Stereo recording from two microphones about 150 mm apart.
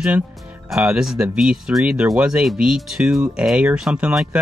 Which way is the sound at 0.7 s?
5° right (ahead or behind).